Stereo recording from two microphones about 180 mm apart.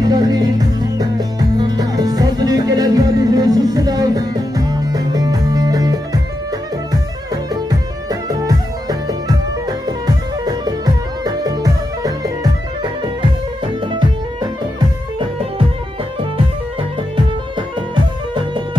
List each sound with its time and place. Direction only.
0.0 s music: 20° right (ahead or behind)
8.1 s music: 20° right (ahead or behind)
17.6 s music: 25° right (ahead or behind)